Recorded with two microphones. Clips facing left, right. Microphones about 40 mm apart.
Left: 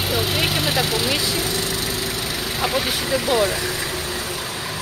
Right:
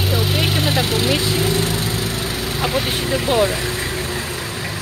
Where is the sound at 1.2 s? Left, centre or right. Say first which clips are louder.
Right 4 dB; right.